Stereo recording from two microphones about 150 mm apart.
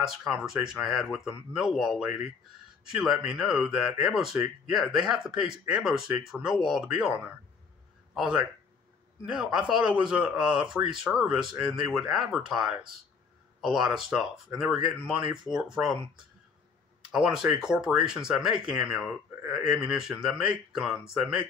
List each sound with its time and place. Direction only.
0.3 s speech: 5° right (ahead or behind)
17.1 s speech: 5° right (ahead or behind)